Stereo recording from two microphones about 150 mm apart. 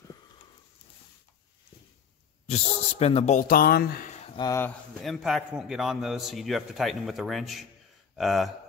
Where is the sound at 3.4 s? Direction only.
80° left.